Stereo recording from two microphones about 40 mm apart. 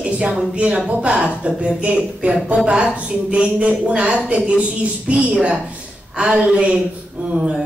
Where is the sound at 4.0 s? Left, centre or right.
Right.